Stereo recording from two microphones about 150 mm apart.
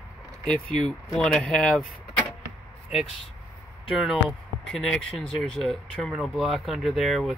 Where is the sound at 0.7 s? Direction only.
5° left (ahead or behind).